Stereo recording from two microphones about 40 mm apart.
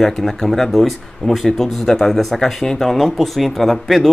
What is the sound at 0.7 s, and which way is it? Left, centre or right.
Speech, centre.